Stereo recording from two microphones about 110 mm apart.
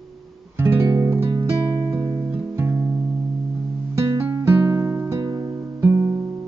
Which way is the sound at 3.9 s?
25° right (ahead or behind).